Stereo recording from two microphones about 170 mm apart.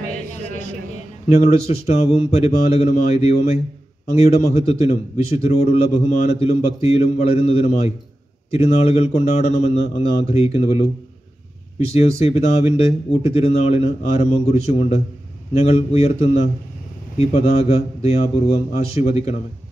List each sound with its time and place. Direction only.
1.9 s a man's voice: 40° left (ahead or behind)
11.9 s a man's voice: 40° left (ahead or behind)